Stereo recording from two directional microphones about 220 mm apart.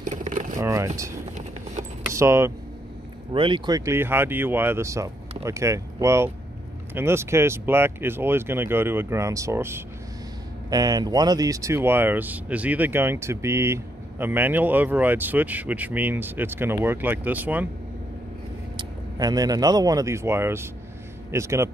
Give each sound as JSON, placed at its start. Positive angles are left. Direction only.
{"t": 0.0, "sound": "a sound", "side_deg": -35}
{"t": 0.6, "sound": "speech", "side_deg": -15}
{"t": 2.1, "sound": "speech", "side_deg": -10}
{"t": 18.8, "sound": "speech", "side_deg": -15}